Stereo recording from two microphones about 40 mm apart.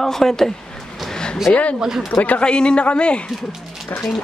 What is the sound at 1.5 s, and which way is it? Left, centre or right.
Speech, left.